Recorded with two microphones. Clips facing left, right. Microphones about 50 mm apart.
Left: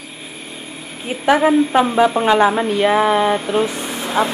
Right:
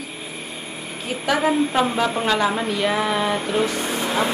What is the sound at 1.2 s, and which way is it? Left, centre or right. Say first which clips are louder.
Speech: left 6 dB; left.